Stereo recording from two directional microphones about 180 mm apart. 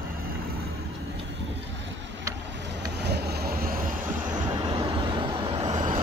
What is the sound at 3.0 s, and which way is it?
Vehicle, 65° right (ahead or behind).